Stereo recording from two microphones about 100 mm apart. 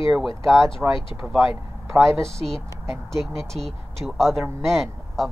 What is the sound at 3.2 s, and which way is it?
Speech, 5° left (ahead or behind).